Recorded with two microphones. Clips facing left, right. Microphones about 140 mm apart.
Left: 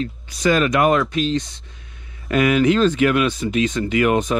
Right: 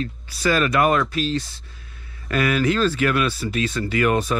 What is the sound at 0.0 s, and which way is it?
Speech, 20° left (ahead or behind).